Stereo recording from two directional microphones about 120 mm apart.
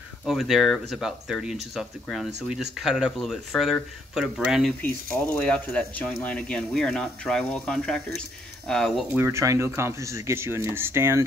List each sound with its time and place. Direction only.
0.2 s speech: centre (ahead or behind)
5.2 s speech: 15° left (ahead or behind)
9.1 s speech: 20° right (ahead or behind)